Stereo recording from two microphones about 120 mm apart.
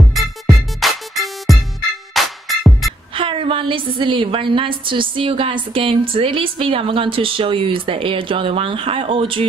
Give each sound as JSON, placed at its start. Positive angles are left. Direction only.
{"t": 0.0, "sound": "music", "side_deg": 0}
{"t": 3.2, "sound": "a woman's voice", "side_deg": -45}